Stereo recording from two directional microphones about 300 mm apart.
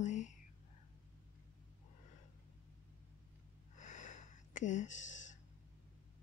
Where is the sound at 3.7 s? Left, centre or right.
Left.